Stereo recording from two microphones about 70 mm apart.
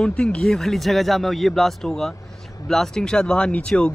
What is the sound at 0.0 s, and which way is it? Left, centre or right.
A man's voice, centre.